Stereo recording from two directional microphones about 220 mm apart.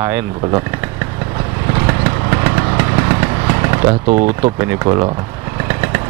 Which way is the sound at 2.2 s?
15° right (ahead or behind).